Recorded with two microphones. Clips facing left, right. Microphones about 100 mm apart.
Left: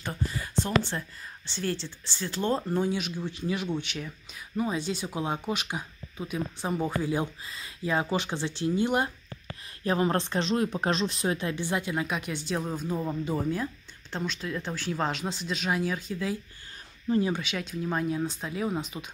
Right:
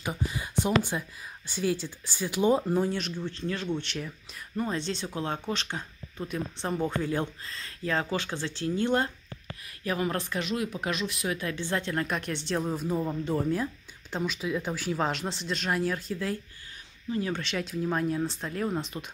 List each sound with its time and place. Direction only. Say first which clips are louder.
0.0 s speech: right 1 dB; 15° right (ahead or behind); by 9.1 s 15° left (ahead or behind)
9.8 s speech: left 4 dB; 30° left (ahead or behind); by 19.0 s centre (ahead or behind)